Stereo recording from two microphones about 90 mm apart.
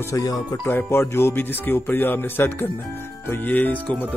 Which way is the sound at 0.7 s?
25° left (ahead or behind).